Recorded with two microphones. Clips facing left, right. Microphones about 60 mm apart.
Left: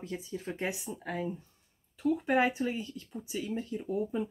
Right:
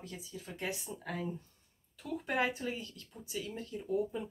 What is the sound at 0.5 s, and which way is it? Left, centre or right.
Speech, left.